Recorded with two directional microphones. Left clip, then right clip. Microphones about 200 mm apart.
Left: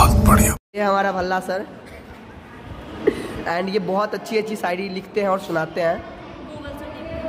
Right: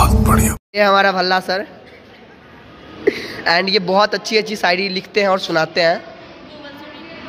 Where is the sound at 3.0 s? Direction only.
15° right (ahead or behind).